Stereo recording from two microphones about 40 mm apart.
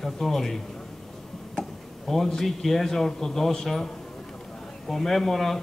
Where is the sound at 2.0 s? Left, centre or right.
Centre.